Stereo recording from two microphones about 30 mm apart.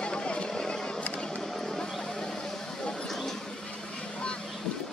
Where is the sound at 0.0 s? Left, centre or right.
Left.